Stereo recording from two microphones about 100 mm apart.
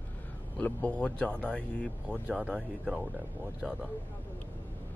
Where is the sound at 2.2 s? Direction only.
15° right (ahead or behind).